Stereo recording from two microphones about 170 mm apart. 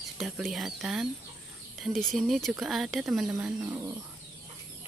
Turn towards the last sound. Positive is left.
turn(degrees=-15)  # may be behind; listen again after turning